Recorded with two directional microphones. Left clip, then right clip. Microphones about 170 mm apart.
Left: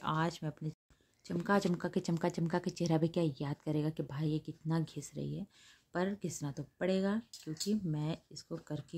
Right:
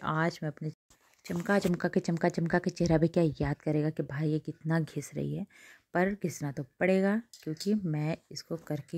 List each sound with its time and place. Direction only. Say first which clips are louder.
0.0 s speech: right 4 dB; 25° right (ahead or behind)